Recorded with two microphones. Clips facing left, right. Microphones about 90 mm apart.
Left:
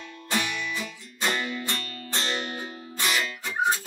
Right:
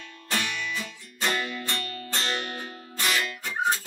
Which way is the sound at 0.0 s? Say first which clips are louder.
Left 2 dB; 15° left (ahead or behind).